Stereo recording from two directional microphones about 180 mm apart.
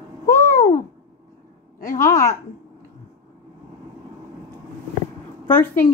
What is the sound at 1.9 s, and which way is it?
Speech, 15° left (ahead or behind).